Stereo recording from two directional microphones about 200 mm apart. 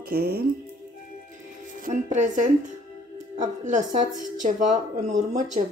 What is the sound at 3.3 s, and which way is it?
Speech, 40° right (ahead or behind).